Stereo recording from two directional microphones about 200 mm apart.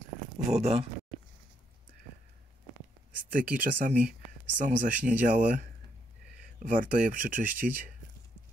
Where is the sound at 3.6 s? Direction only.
40° right (ahead or behind).